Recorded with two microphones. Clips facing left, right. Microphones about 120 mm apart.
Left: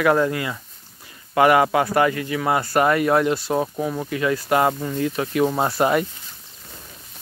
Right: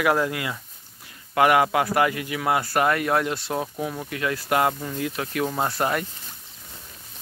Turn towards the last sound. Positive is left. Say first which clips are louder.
# left 5 dB
turn(degrees=10)  # may be behind; listen again after turning